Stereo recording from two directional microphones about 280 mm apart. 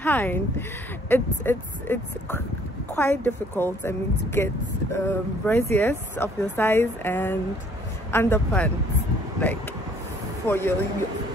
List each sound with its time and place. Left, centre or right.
0.0 s a woman's voice: centre
10.4 s a woman's voice: centre